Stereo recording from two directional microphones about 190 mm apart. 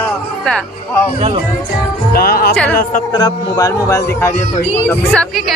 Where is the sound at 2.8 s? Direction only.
45° left (ahead or behind).